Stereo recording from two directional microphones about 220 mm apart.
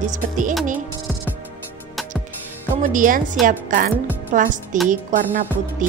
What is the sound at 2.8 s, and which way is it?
A woman's voice, 35° right (ahead or behind).